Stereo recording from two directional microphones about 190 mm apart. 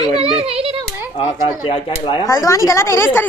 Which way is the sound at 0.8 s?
10° right (ahead or behind).